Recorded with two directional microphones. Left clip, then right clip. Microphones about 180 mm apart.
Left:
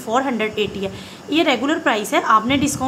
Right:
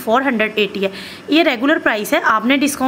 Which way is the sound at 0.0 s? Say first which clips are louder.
Right 4 dB; 20° right (ahead or behind).